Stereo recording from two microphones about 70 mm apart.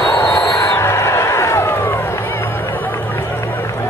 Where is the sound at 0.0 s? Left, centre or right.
Left.